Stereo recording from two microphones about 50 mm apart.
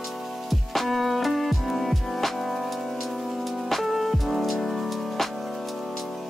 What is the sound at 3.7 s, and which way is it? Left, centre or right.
Music, centre.